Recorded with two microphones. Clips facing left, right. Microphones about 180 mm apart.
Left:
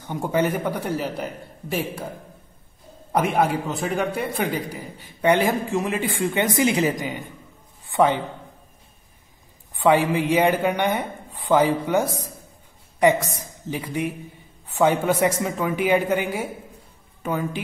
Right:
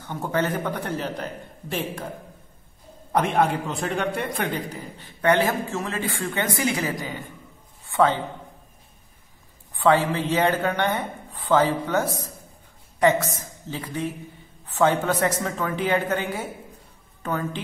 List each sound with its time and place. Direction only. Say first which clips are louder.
0.0 s a man's voice: left 3 dB; 15° left (ahead or behind)
3.1 s a man's voice: left 1 dB; 10° left (ahead or behind)
9.8 s a man's voice: left 2 dB; 15° left (ahead or behind)